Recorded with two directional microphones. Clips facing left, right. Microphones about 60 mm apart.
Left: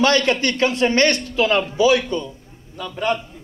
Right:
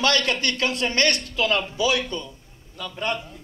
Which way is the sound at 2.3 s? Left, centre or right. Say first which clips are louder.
Left 6 dB; centre.